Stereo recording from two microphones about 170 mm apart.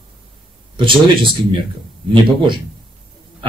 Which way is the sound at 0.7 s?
30° right (ahead or behind).